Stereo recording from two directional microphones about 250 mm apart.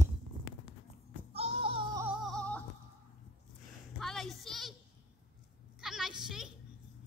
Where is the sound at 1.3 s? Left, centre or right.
Right.